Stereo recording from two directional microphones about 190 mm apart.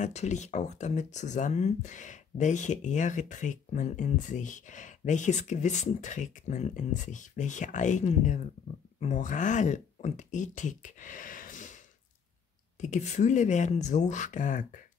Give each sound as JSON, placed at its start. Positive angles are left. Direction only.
{"t": 0.0, "sound": "speech", "side_deg": 35}
{"t": 12.8, "sound": "speech", "side_deg": 40}